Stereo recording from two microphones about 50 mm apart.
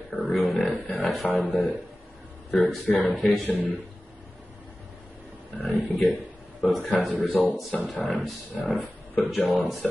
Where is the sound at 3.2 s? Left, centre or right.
Centre.